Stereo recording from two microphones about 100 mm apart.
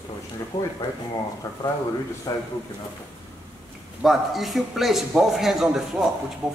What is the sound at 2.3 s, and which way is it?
Speech, 40° left (ahead or behind).